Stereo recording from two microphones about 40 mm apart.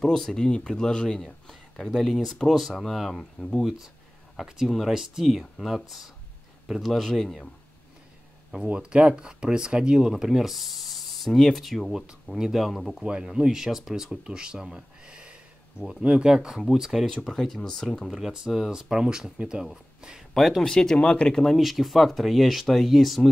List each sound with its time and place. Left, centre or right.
0.0 s speech: centre
3.1 s speech: centre
4.6 s speech: centre
4.9 s speech: centre
8.6 s speech: right; by 11.3 s centre
11.3 s speech: centre
11.6 s speech: centre
14.2 s speech: right
17.1 s speech: centre
18.5 s speech: centre
20.3 s speech: centre
20.6 s speech: centre
21.0 s speech: left
21.5 s speech: centre